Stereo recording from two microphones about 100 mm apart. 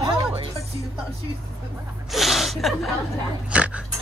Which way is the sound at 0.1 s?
75° right (ahead or behind).